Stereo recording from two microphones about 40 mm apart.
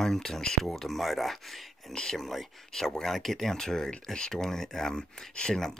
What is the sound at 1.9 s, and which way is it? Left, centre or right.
Speech, centre.